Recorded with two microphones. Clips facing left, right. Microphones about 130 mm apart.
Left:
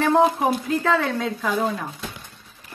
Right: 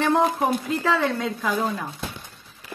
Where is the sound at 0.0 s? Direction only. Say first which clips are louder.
Left 2 dB; centre (ahead or behind).